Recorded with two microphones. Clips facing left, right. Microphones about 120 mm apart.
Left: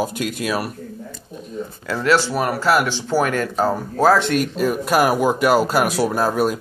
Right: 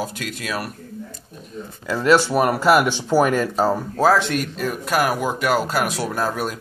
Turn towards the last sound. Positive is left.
turn(degrees=10)  # may be behind; listen again after turning